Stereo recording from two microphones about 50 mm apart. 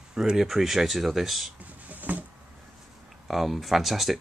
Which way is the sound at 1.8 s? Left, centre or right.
Right.